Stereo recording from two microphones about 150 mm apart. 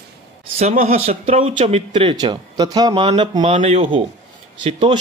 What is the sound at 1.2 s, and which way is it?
Speech, 40° right (ahead or behind).